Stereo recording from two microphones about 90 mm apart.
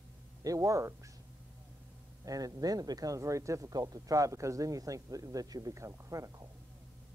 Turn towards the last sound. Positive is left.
turn(degrees=-35)  # may be behind; listen again after turning